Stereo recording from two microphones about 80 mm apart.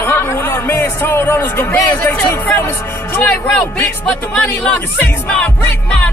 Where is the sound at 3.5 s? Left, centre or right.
Centre.